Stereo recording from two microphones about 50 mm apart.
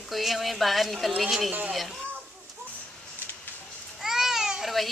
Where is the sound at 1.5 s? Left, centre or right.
Right.